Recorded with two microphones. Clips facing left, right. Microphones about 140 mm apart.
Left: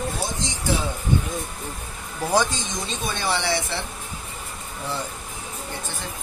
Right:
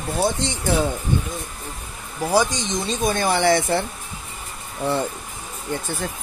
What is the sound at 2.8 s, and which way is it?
Speech, 45° right (ahead or behind).